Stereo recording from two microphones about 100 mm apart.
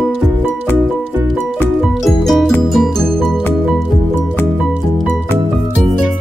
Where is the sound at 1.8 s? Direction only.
5° right (ahead or behind).